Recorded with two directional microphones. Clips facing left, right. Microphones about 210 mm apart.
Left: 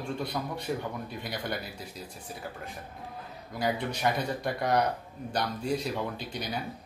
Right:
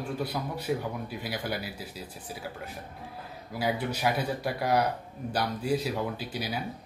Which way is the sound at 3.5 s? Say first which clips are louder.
Right 1 dB; 5° right (ahead or behind).